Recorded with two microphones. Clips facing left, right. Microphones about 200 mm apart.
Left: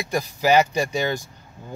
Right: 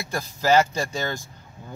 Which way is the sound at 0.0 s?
15° left (ahead or behind).